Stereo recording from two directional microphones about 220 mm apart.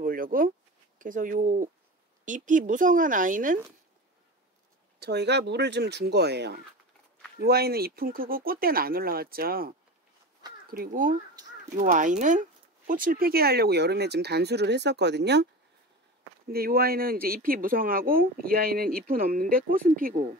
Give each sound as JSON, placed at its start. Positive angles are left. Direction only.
{"t": 0.0, "sound": "a sound", "side_deg": -40}
{"t": 0.9, "sound": "speech", "side_deg": -35}
{"t": 5.0, "sound": "speech", "side_deg": -50}
{"t": 16.5, "sound": "speech", "side_deg": -45}